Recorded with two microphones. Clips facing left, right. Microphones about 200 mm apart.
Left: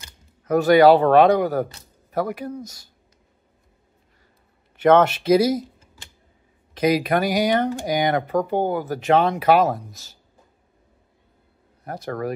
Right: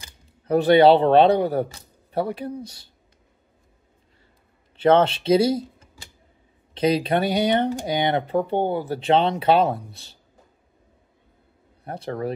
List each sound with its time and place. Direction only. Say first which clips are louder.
0.5 s speech: left 1 dB; 30° right (ahead or behind)
4.9 s speech: left 2 dB; 30° right (ahead or behind)
6.7 s speech: left 1 dB; 30° right (ahead or behind)
11.8 s speech: even; 30° right (ahead or behind)